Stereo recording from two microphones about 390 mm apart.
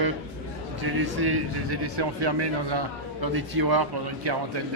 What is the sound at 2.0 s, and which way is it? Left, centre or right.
A man's voice, right.